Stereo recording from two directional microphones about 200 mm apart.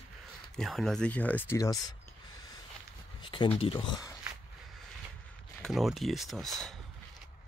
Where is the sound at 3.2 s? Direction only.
25° left (ahead or behind).